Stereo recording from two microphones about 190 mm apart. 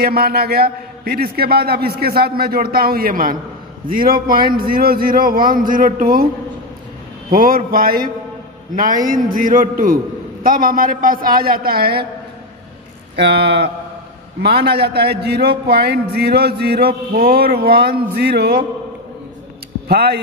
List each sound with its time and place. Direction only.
0.0 s a man's voice: 55° right (ahead or behind)
7.2 s a man's voice: 50° right (ahead or behind)
13.1 s a man's voice: 60° right (ahead or behind)
19.9 s a man's voice: 55° right (ahead or behind)